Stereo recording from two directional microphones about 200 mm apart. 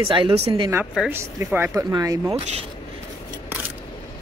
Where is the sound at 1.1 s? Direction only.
10° right (ahead or behind).